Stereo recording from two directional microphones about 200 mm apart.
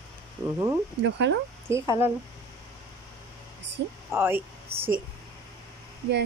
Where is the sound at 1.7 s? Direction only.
15° right (ahead or behind).